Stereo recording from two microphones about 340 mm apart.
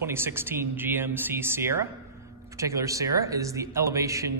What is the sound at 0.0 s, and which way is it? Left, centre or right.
A man's voice, centre.